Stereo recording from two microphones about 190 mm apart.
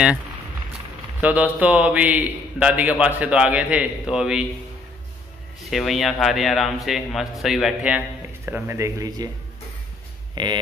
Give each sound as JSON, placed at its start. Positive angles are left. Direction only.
{"t": 1.2, "sound": "a man's voice", "side_deg": -5}
{"t": 5.6, "sound": "a man's voice", "side_deg": 0}
{"t": 10.3, "sound": "speech", "side_deg": -25}